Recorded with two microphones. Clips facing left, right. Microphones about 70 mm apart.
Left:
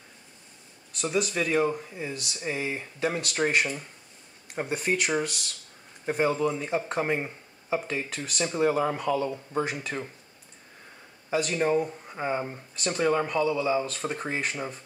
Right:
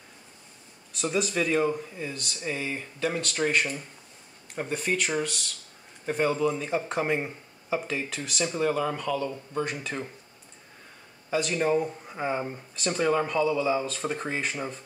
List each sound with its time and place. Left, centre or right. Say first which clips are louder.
0.9 s speech: even; centre
8.5 s speech: left 3 dB; centre
9.8 s speech: even; centre
11.2 s speech: even; centre